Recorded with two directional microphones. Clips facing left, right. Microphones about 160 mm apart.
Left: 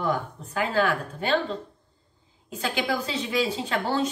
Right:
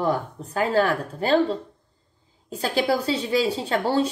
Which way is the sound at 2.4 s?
35° right (ahead or behind).